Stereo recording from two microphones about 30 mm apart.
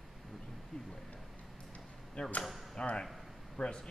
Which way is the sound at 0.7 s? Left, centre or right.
Centre.